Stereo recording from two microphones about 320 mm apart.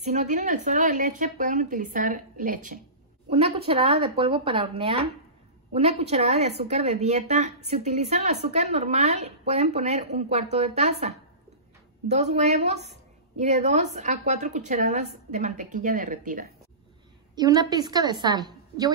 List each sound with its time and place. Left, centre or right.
0.0 s a woman's voice: right
17.4 s speech: centre